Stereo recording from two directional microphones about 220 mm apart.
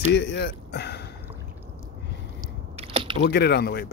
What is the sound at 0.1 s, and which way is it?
Speech, 55° left (ahead or behind).